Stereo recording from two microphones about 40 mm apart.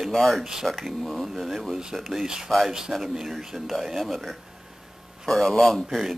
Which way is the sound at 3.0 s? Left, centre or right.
Centre.